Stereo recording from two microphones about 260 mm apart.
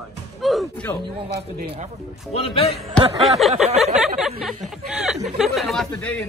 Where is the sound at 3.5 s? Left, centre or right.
Right.